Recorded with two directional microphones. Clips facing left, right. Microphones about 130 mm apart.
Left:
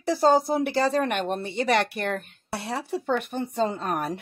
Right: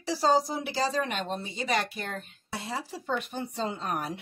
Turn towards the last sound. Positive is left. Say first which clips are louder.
# left 4 dB
turn(degrees=50)  # may be behind; listen again after turning